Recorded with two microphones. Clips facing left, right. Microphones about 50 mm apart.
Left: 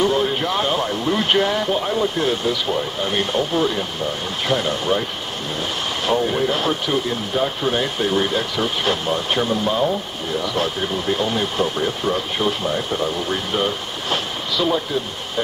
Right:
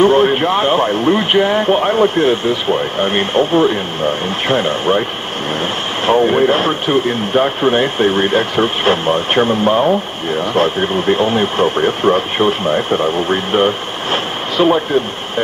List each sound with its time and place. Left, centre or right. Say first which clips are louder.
0.0 s speech: right 8 dB; right
1.3 s speech: right 3 dB; right
1.6 s speech: right 8 dB; right
6.0 s speech: right 8 dB; right